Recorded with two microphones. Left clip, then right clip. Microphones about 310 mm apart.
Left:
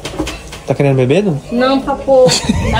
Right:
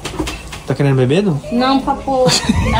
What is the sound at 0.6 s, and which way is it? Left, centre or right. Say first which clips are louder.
Speech: left 4 dB; centre.